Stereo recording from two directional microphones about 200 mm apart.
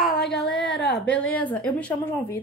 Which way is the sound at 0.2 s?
60° left (ahead or behind).